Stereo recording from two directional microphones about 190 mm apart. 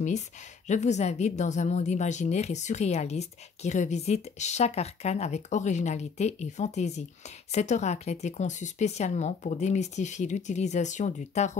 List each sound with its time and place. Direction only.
0.7 s a woman's voice: 35° left (ahead or behind)